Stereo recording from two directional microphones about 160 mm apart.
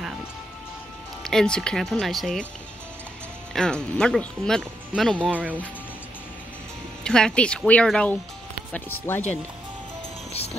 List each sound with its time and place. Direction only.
1.2 s speech: 5° left (ahead or behind)
3.5 s speech: 5° left (ahead or behind)
5.3 s speech: 10° right (ahead or behind)
7.1 s speech: 5° left (ahead or behind)
10.3 s speech: 40° left (ahead or behind)